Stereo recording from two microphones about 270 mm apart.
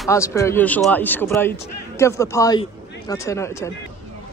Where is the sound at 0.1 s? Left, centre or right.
Centre.